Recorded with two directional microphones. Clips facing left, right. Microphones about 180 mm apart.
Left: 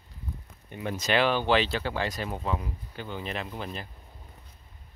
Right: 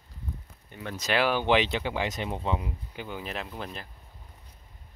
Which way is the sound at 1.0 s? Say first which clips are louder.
Left 1 dB; 5° right (ahead or behind).